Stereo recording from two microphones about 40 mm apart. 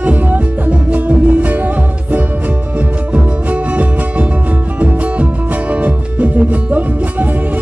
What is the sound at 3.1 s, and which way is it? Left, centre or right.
Music, right.